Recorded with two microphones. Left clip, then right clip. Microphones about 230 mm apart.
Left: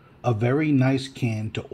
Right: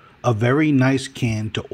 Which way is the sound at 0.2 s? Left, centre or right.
Right.